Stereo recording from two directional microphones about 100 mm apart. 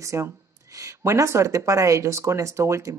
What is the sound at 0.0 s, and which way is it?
Speech, 30° right (ahead or behind).